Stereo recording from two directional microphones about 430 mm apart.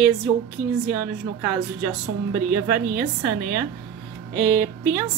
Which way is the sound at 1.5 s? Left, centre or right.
Centre.